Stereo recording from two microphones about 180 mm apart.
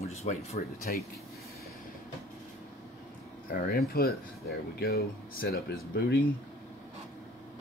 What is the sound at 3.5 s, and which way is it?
Speech, 55° left (ahead or behind).